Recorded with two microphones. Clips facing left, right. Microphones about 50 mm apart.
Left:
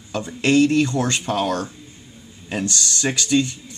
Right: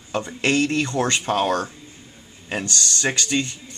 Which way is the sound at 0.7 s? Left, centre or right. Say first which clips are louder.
Left 2 dB; right.